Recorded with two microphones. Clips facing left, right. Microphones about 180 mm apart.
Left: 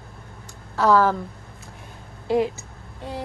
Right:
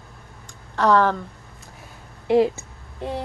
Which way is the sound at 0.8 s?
5° left (ahead or behind).